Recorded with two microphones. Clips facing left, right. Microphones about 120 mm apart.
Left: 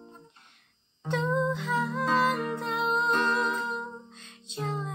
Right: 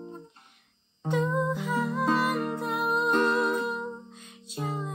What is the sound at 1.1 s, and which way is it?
Music, 10° right (ahead or behind).